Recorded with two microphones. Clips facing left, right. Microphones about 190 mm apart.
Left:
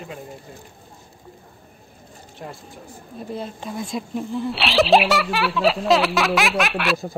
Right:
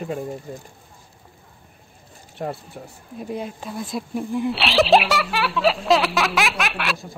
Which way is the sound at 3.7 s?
Centre (ahead or behind).